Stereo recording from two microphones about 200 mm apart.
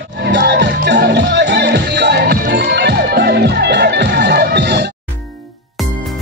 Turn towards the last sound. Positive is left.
turn(degrees=-55)  # may be behind; listen again after turning